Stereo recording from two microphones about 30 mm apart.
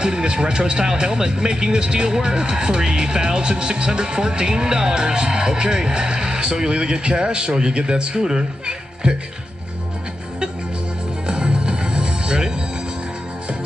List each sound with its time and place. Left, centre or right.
0.0 s speech: right
11.2 s music: right